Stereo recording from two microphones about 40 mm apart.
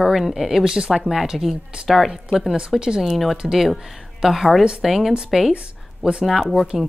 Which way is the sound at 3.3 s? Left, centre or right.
Centre.